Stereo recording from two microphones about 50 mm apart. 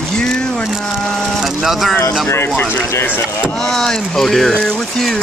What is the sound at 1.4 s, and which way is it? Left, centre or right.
Speech, centre.